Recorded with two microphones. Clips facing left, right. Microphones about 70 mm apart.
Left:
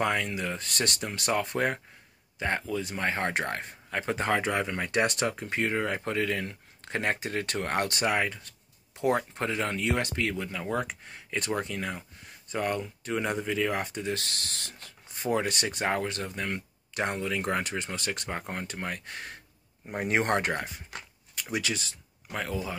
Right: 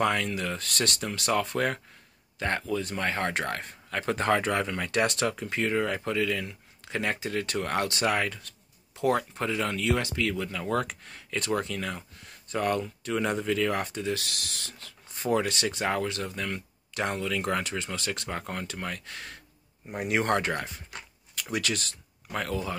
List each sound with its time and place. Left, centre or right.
0.0 s speech: centre
8.1 s speech: left
10.3 s speech: left
14.0 s speech: left; by 22.8 s centre